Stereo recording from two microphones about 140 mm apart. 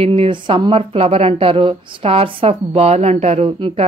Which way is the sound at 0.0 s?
45° right (ahead or behind).